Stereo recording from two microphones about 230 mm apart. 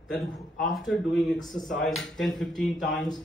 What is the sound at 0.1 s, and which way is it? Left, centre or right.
A man's voice, centre.